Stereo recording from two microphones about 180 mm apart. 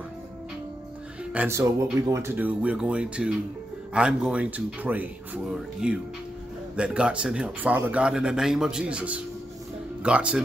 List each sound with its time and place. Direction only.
1.3 s speech: 10° right (ahead or behind)